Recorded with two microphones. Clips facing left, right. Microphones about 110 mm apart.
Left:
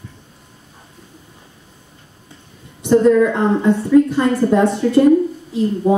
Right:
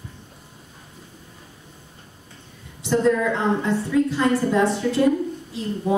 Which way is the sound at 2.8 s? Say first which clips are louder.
Left 8 dB; 55° left (ahead or behind).